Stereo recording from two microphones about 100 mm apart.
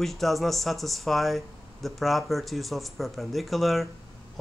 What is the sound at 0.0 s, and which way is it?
Speech, centre (ahead or behind).